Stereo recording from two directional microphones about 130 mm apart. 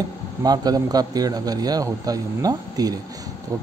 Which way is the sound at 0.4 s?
30° right (ahead or behind).